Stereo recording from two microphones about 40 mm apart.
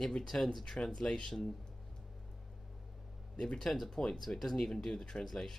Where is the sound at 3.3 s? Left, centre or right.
Left.